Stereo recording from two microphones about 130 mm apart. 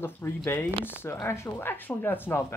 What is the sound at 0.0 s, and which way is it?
Speech, 15° left (ahead or behind).